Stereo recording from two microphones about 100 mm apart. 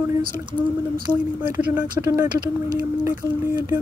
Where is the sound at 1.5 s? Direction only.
25° right (ahead or behind).